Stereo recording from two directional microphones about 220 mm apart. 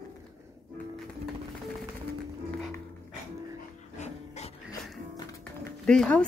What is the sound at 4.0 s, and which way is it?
Music, 30° left (ahead or behind).